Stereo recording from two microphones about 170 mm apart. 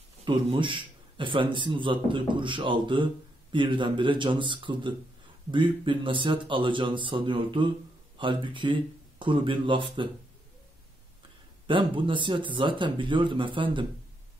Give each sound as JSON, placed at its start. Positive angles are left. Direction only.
{"t": 0.2, "sound": "a man's voice", "side_deg": -30}
{"t": 11.6, "sound": "a man's voice", "side_deg": -30}